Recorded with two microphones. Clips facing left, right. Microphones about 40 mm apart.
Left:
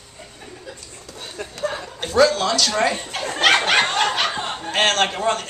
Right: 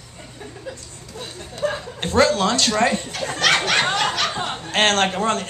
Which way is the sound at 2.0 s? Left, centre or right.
Right.